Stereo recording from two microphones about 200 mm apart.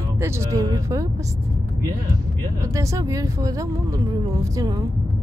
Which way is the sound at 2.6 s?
15° right (ahead or behind).